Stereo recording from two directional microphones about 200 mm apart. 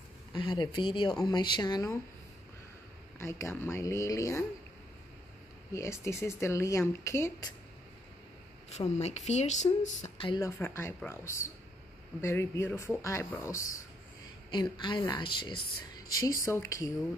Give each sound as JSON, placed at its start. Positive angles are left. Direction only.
{"t": 0.3, "sound": "speech", "side_deg": 20}
{"t": 3.2, "sound": "speech", "side_deg": 15}
{"t": 5.7, "sound": "speech", "side_deg": 15}
{"t": 8.6, "sound": "speech", "side_deg": 35}
{"t": 10.3, "sound": "speech", "side_deg": 15}